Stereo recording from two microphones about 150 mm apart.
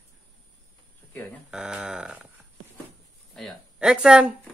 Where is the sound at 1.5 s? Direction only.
5° right (ahead or behind).